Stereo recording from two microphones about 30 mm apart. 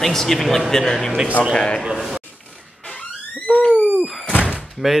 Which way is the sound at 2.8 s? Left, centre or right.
Left.